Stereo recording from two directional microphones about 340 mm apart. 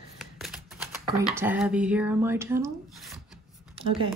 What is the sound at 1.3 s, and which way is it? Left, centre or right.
Speech, centre.